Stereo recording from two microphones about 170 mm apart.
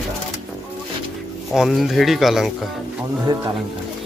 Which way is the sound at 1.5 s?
Centre (ahead or behind).